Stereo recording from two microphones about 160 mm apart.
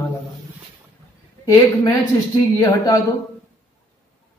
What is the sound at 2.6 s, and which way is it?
Speech, 20° left (ahead or behind).